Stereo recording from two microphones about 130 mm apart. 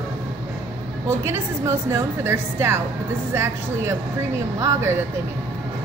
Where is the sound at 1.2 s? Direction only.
20° right (ahead or behind).